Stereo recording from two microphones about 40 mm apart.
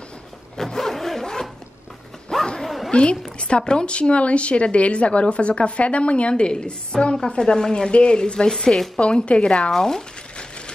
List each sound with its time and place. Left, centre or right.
0.6 s zipper: centre
2.6 s bow-wow: centre
2.9 s a woman's voice: left
8.9 s speech: left
9.7 s a sound: centre